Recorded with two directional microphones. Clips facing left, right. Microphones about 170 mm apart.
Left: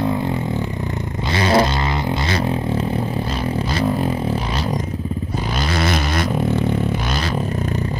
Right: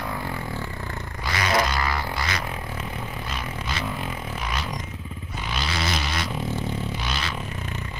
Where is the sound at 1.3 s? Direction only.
30° left (ahead or behind).